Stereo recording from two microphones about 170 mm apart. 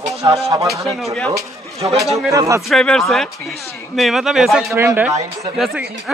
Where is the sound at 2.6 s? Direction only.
5° left (ahead or behind).